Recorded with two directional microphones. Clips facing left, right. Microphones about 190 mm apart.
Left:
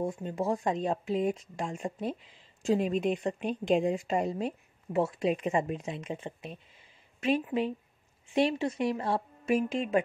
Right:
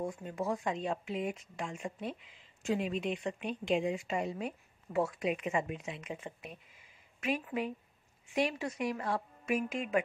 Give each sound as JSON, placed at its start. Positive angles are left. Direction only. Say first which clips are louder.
{"t": 0.0, "sound": "a woman's voice", "louder": "left 5 dB", "side_deg": 30}